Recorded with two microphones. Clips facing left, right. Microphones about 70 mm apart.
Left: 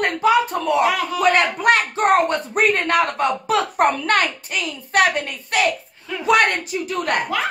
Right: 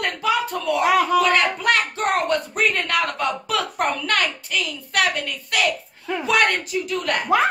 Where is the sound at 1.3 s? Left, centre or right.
Left.